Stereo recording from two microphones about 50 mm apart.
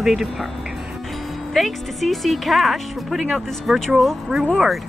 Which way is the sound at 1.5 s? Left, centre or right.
Centre.